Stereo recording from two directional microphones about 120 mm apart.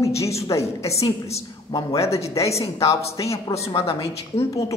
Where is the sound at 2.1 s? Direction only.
25° left (ahead or behind).